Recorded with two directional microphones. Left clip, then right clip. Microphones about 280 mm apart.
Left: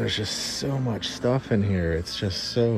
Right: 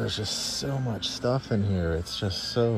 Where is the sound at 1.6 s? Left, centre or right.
Centre.